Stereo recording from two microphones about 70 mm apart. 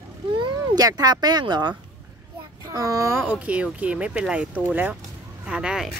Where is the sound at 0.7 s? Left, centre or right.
Right.